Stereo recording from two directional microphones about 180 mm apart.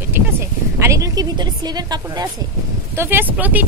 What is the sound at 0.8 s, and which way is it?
A woman's voice, 15° right (ahead or behind).